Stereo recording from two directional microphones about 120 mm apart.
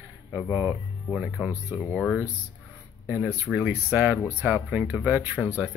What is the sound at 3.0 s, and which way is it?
Speech, 15° right (ahead or behind).